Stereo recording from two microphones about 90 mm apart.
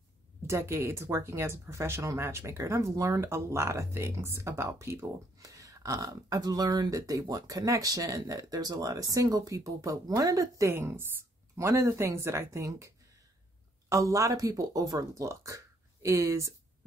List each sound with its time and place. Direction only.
0.5 s speech: 30° right (ahead or behind)
10.7 s a woman's voice: 25° right (ahead or behind)